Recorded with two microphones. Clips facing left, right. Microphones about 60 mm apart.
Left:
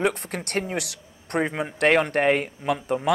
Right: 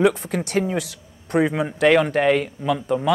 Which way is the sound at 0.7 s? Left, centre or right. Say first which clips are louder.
Right 4 dB; left.